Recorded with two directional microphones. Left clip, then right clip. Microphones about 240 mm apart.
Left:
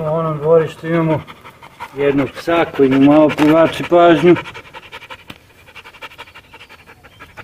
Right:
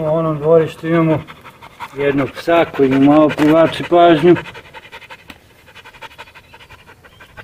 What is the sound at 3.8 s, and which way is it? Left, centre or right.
Pant, centre.